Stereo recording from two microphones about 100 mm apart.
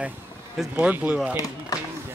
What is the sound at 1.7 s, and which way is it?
Run, 35° left (ahead or behind).